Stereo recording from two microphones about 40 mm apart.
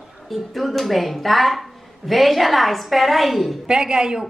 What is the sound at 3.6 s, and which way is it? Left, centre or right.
Speech, centre.